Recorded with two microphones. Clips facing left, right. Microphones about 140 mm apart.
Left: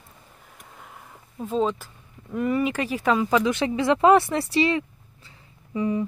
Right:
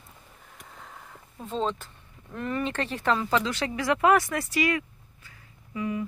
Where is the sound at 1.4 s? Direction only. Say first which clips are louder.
Left 5 dB; 5° left (ahead or behind).